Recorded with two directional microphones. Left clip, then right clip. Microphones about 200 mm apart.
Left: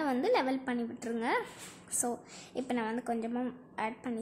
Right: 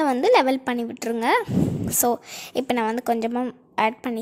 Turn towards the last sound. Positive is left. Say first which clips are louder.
# right 14 dB
turn(degrees=-40)  # may be behind; listen again after turning